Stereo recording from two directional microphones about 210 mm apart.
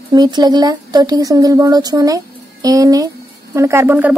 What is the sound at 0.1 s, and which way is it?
Speech, 20° right (ahead or behind).